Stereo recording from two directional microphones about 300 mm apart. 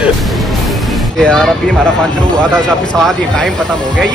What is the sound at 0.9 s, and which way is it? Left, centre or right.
A man's voice, centre.